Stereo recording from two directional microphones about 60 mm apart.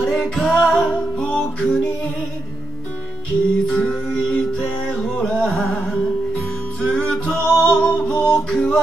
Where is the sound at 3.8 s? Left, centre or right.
Left.